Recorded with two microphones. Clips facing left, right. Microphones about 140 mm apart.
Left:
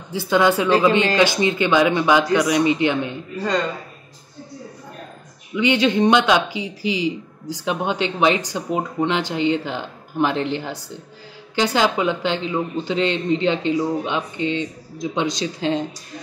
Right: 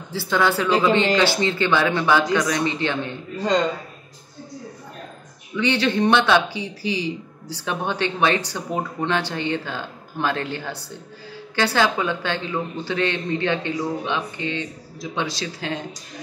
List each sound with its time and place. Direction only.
0.1 s speech: 15° left (ahead or behind)
5.6 s a man's voice: 15° left (ahead or behind)